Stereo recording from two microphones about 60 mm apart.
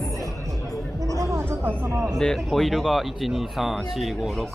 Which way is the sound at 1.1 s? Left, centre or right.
Right.